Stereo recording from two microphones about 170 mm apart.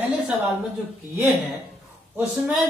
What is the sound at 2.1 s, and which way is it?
Speech, 5° right (ahead or behind).